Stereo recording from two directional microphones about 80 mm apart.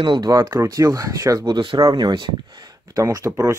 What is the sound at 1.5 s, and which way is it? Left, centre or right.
Speech, right.